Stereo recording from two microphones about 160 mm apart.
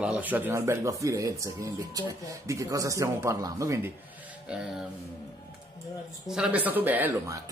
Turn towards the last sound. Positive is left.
turn(degrees=-15)  # may be behind; listen again after turning